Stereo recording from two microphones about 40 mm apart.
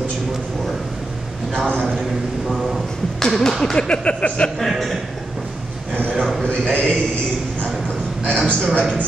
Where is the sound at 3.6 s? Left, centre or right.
Centre.